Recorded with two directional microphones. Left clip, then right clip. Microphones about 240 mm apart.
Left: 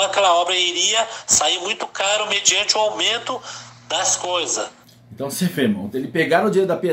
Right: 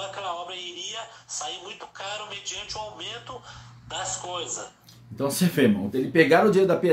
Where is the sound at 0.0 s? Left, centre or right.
Left.